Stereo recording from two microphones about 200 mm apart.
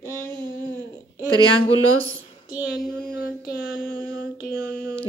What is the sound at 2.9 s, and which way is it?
Mantra, 55° left (ahead or behind).